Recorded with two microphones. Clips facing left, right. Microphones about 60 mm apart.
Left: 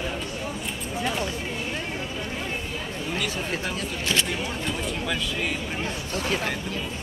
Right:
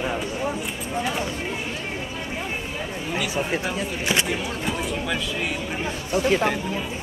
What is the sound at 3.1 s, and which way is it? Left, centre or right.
Speech, centre.